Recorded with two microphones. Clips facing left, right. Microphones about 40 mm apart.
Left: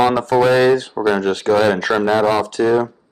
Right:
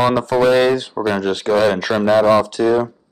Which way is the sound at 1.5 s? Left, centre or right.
Left.